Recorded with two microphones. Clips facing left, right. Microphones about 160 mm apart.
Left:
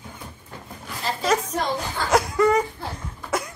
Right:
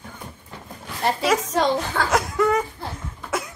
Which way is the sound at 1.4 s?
90° right.